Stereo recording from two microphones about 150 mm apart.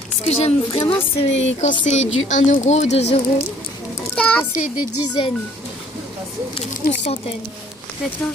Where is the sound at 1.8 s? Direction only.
50° left (ahead or behind).